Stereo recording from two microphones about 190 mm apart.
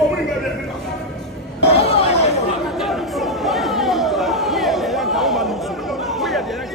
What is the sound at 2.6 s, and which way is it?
Chatter, centre (ahead or behind).